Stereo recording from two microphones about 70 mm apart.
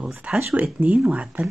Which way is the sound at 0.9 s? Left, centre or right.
Centre.